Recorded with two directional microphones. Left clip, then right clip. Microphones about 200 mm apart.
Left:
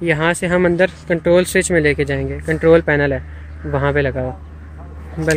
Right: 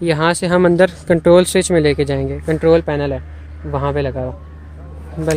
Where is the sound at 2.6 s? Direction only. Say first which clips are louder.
Left 2 dB; 5° left (ahead or behind).